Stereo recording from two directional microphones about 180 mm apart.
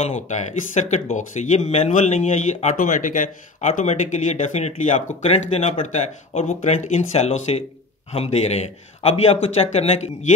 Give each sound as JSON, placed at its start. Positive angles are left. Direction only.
{"t": 0.0, "sound": "speech", "side_deg": 40}